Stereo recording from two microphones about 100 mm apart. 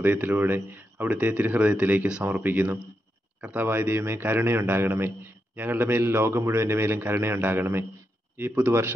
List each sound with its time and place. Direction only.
0.0 s a man's voice: 20° right (ahead or behind)